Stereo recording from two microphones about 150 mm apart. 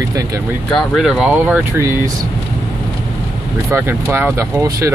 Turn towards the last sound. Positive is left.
turn(degrees=-20)  # may be behind; listen again after turning